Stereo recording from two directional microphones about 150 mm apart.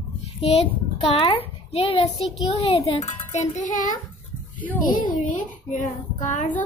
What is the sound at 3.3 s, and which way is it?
Speech, 55° left (ahead or behind).